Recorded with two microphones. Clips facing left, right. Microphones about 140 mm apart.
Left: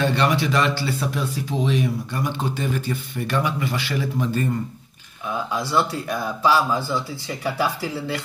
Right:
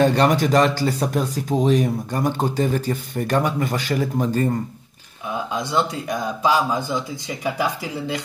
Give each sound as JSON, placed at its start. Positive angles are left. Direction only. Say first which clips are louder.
{"t": 0.0, "sound": "speech", "louder": "right 4 dB", "side_deg": -40}
{"t": 5.3, "sound": "a man's voice", "louder": "even", "side_deg": -20}